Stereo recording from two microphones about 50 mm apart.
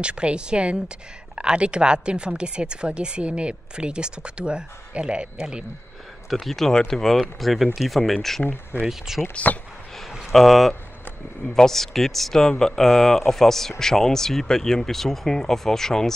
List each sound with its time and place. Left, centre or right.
0.0 s a woman's voice: right
6.4 s speech: centre
8.8 s speech: centre
9.3 s speech: left
9.9 s a sound: centre
11.4 s speech: centre